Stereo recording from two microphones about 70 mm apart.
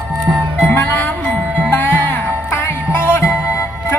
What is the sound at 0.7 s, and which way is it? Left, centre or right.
Music, left.